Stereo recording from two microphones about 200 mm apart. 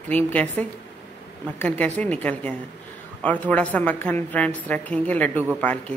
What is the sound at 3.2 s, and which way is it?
A woman's voice, 5° left (ahead or behind).